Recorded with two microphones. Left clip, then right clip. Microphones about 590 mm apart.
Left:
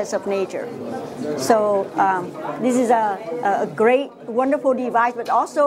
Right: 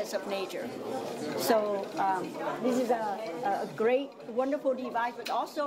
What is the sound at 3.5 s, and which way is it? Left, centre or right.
A woman's voice, left.